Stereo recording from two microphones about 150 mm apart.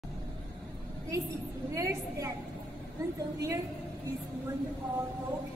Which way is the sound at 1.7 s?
20° right (ahead or behind).